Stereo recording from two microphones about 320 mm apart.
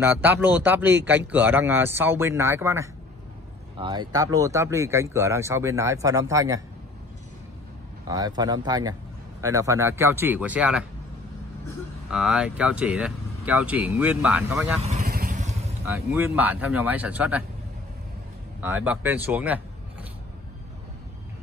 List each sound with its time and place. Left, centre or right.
0.0 s speech: centre
8.1 s speech: centre
12.1 s speech: centre
14.8 s vehicle: right
15.8 s speech: centre
18.6 s speech: centre